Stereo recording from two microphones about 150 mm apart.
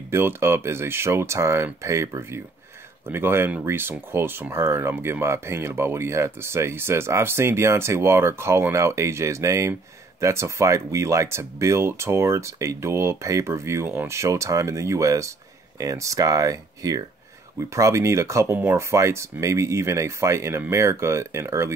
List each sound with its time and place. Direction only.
0.1 s speech: 15° right (ahead or behind)